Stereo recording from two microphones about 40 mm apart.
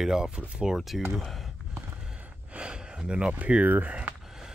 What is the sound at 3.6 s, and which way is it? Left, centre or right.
Speech, right.